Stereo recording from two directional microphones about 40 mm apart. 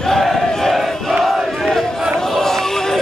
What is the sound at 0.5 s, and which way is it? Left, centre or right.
Battle cry, centre.